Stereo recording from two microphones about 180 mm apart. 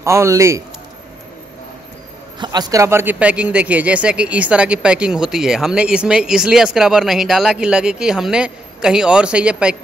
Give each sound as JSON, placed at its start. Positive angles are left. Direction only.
{"t": 0.0, "sound": "a man's voice", "side_deg": -15}
{"t": 2.4, "sound": "speech", "side_deg": -20}